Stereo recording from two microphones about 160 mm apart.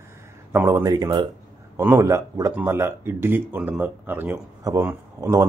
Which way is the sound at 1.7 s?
15° right (ahead or behind).